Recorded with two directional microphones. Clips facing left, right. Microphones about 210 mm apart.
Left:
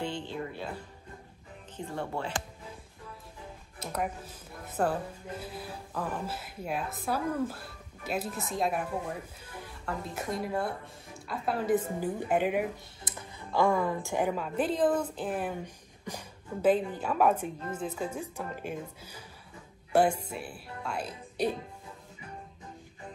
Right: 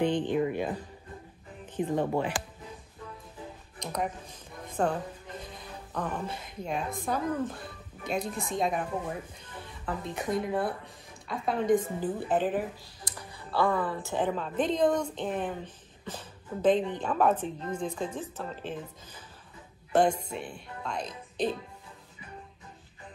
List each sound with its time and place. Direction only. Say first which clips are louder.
0.0 s music: right 9 dB; 15° right (ahead or behind)
1.8 s speech: right 7 dB; 15° right (ahead or behind)
3.8 s speech: right 1 dB; 5° left (ahead or behind)
9.4 s music: even; 10° left (ahead or behind)
9.8 s speech: right 3 dB; centre (ahead or behind)
13.0 s speech: right 2 dB; 20° left (ahead or behind)